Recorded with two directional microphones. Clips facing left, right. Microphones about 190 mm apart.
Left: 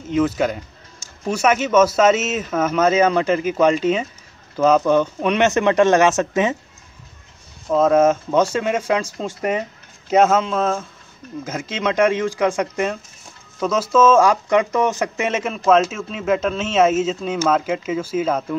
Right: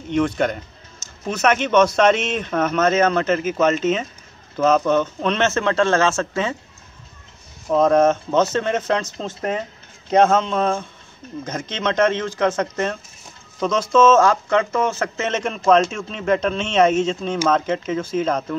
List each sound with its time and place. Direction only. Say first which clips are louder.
0.1 s a man's voice: left 1 dB; 5° left (ahead or behind)
7.6 s a man's voice: left 1 dB; centre (ahead or behind)